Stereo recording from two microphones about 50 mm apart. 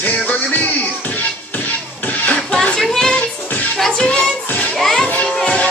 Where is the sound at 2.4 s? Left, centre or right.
Centre.